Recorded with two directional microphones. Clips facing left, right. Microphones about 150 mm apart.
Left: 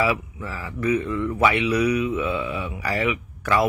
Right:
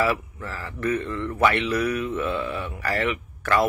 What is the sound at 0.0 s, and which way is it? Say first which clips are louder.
A man's voice: left 1 dB; 15° left (ahead or behind).